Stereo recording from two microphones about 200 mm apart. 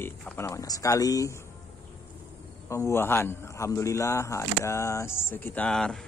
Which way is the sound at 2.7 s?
15° left (ahead or behind).